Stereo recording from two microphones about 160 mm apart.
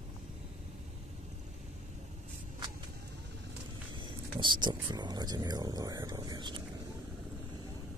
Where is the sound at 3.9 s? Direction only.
30° right (ahead or behind).